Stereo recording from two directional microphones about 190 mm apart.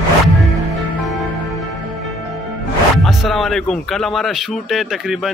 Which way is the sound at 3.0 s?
Centre (ahead or behind).